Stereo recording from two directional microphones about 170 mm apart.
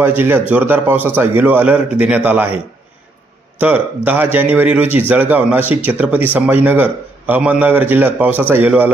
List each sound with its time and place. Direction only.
0.0 s a man's voice: 10° right (ahead or behind)